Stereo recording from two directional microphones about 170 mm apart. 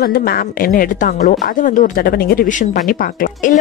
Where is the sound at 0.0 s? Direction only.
60° left (ahead or behind).